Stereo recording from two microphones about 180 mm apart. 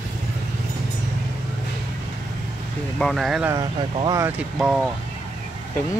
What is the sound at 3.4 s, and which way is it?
Speech, 20° right (ahead or behind).